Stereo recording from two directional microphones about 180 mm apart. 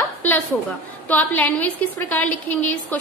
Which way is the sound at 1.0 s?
10° left (ahead or behind).